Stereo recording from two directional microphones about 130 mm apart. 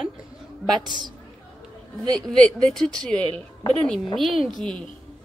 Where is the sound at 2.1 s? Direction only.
5° left (ahead or behind).